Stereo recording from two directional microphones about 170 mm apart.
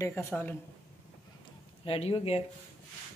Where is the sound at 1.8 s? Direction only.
35° left (ahead or behind).